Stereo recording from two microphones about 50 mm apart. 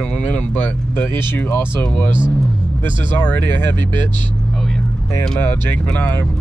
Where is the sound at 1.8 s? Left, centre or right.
Left.